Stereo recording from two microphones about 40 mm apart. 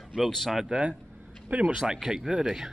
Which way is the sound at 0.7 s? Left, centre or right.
Centre.